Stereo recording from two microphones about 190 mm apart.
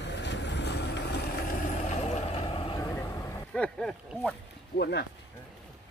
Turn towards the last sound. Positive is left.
turn(degrees=60)  # may be behind; listen again after turning